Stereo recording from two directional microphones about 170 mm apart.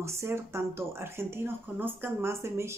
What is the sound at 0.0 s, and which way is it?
Speech, 15° right (ahead or behind).